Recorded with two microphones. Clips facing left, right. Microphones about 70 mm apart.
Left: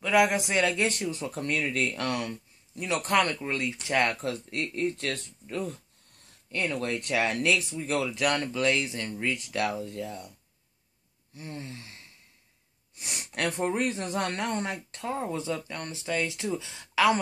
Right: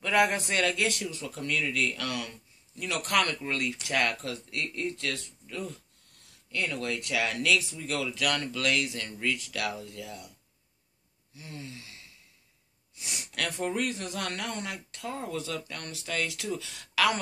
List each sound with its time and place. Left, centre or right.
0.0 s speech: centre
0.7 s speech: left
11.3 s speech: left
13.3 s speech: left